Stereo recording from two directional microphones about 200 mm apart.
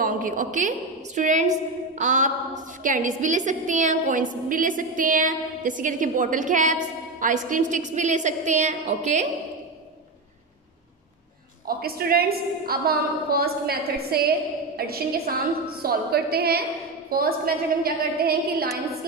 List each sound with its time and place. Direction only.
0.0 s a woman's voice: 40° right (ahead or behind)
11.6 s a woman's voice: 50° right (ahead or behind)